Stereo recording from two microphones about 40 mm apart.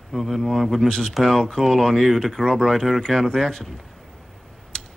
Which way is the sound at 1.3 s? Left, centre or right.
Centre.